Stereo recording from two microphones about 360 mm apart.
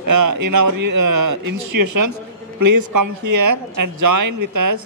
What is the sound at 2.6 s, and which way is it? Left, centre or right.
A man's voice, right.